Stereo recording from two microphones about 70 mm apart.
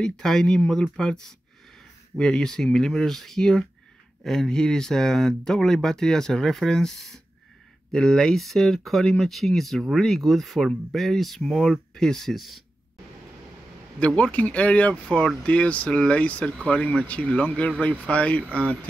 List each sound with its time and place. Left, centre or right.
0.0 s speech: centre
13.9 s speech: centre